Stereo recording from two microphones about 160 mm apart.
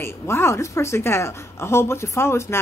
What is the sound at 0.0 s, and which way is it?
A woman's voice, 15° left (ahead or behind).